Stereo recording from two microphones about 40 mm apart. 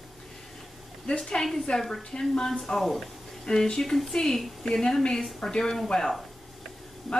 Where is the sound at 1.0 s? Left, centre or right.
Centre.